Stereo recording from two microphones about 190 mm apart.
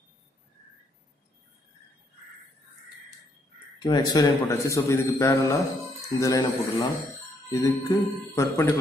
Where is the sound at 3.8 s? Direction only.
20° left (ahead or behind).